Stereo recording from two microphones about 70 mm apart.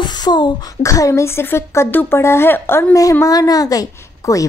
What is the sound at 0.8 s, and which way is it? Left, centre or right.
A woman's voice, left.